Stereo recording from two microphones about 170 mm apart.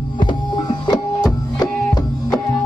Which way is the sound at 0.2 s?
25° left (ahead or behind).